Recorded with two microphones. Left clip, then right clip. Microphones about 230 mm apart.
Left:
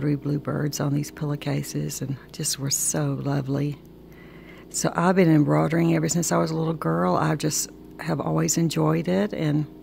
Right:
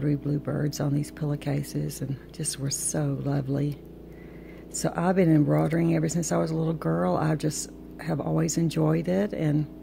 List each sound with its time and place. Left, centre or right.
0.0 s speech: centre
4.7 s speech: centre